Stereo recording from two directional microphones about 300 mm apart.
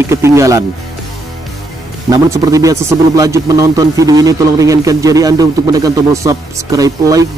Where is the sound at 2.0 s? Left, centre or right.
Centre.